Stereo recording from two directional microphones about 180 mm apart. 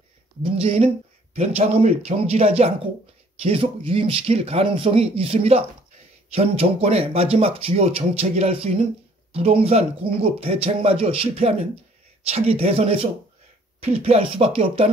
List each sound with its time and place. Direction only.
0.4 s speech: 30° right (ahead or behind)